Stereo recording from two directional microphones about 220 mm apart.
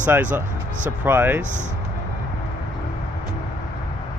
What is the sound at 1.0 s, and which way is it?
Speech, 10° right (ahead or behind).